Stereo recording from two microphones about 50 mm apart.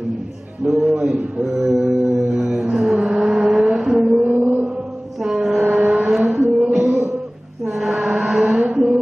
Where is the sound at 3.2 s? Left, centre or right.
Centre.